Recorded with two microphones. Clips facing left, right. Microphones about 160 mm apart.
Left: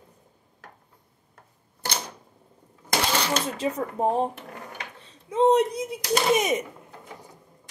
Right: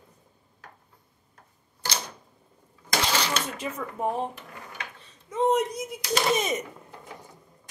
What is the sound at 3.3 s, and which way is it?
Speech, 40° left (ahead or behind).